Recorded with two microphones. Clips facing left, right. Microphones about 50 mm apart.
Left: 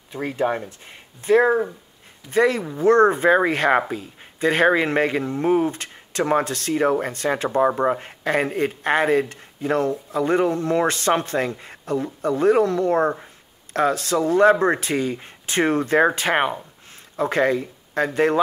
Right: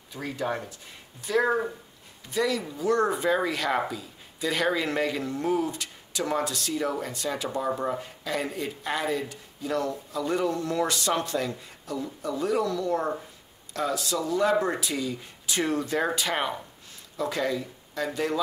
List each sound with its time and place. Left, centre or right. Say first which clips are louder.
0.1 s speech: left 7 dB; left